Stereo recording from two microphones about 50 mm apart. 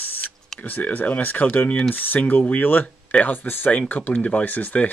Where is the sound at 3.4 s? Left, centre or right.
Left.